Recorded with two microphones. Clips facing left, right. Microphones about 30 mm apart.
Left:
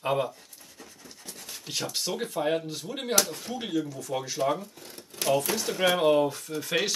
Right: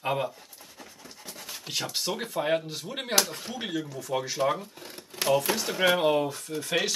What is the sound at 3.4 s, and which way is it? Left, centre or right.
Speech, centre.